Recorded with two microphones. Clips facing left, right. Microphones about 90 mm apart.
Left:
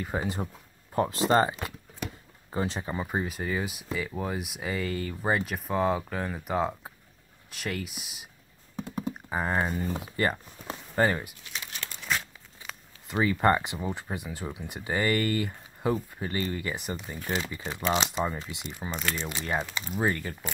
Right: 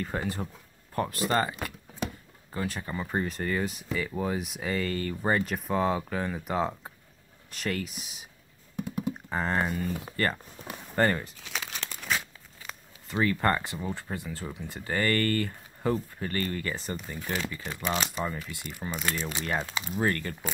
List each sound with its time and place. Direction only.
0.0 s speech: 10° left (ahead or behind)
0.9 s speech: 20° left (ahead or behind); by 8.3 s centre (ahead or behind)
8.7 s computer keyboard: 30° left (ahead or behind)
9.3 s speech: 10° left (ahead or behind)
11.4 s crumpling: 90° right
13.1 s speech: 15° left (ahead or behind)
18.8 s speech: 5° right (ahead or behind)
19.4 s speech: 5° left (ahead or behind)
19.7 s speech: 10° right (ahead or behind)
20.0 s speech: 10° left (ahead or behind)